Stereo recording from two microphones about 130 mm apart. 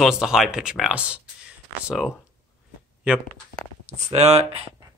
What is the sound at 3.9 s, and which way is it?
Speech, 60° right (ahead or behind).